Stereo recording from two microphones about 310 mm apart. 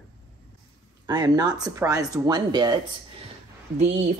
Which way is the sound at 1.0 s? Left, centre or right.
Centre.